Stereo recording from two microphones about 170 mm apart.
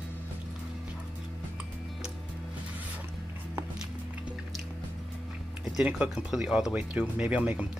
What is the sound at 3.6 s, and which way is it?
Music, 5° right (ahead or behind).